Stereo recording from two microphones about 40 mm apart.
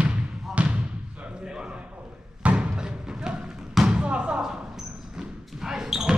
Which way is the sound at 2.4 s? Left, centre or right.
Right.